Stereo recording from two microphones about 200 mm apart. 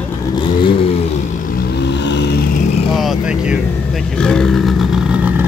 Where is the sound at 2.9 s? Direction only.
Centre (ahead or behind).